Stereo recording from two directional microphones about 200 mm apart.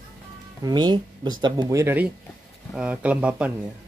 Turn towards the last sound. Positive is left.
turn(degrees=-5)  # may be behind; listen again after turning